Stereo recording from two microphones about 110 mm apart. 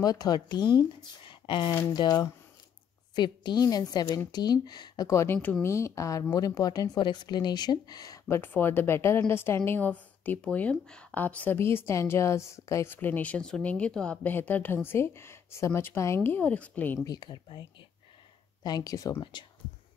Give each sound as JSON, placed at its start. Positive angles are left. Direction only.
{"t": 0.0, "sound": "speech", "side_deg": 35}
{"t": 8.3, "sound": "speech", "side_deg": 20}
{"t": 17.0, "sound": "speech", "side_deg": 35}